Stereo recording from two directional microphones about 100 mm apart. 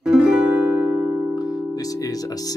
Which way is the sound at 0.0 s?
5° right (ahead or behind).